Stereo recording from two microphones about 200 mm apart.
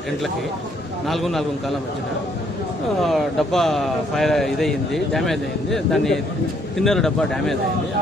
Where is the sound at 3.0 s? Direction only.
Centre (ahead or behind).